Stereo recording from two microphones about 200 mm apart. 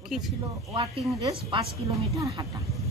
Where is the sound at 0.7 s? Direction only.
20° right (ahead or behind).